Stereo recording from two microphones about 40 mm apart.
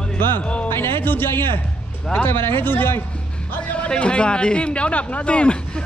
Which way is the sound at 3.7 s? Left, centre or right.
Left.